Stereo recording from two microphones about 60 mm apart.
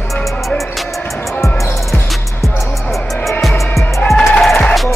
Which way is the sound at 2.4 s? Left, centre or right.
Centre.